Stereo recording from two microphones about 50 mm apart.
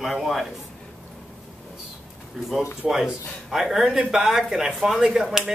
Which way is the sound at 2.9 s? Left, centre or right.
Centre.